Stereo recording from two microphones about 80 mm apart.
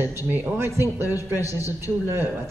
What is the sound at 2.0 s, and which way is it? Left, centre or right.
Speech, right.